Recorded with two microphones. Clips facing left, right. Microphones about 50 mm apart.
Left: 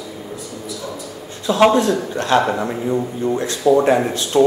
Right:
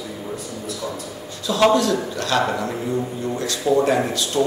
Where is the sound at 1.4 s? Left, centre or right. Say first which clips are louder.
Left 3 dB; left.